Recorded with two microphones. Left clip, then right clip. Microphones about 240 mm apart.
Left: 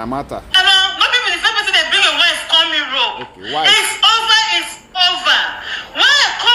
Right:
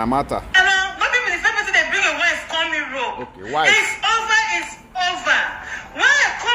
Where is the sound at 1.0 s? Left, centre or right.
Left.